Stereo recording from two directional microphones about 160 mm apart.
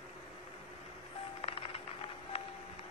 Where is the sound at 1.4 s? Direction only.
35° left (ahead or behind).